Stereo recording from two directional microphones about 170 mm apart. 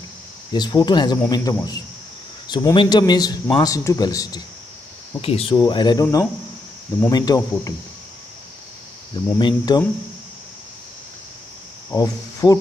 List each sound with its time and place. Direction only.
0.5 s a man's voice: 25° left (ahead or behind)
5.2 s speech: 35° left (ahead or behind)
5.6 s a man's voice: 25° left (ahead or behind)
7.1 s a man's voice: 20° left (ahead or behind)
9.1 s a man's voice: 30° left (ahead or behind)
11.9 s speech: 20° left (ahead or behind)